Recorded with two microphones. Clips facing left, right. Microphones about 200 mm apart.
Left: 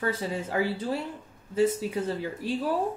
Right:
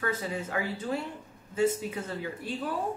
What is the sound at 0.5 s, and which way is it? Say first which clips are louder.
Speech: left 5 dB; 35° left (ahead or behind).